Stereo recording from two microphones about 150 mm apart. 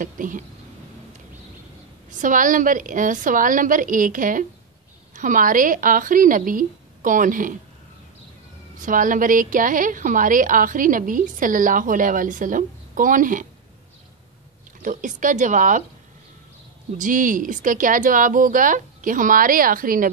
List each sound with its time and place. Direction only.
0.0 s a woman's voice: 60° right (ahead or behind)
2.0 s a woman's voice: 60° right (ahead or behind)
8.7 s a woman's voice: 60° right (ahead or behind)
14.8 s a woman's voice: 60° right (ahead or behind)
17.0 s a woman's voice: 60° right (ahead or behind)